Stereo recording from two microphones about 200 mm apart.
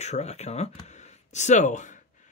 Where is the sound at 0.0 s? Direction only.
35° left (ahead or behind).